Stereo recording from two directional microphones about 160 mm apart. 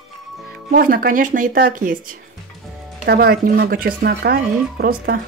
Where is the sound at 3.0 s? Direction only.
70° right (ahead or behind).